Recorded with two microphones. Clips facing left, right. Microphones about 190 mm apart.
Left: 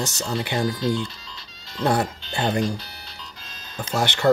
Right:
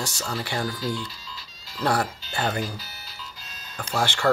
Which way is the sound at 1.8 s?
25° left (ahead or behind).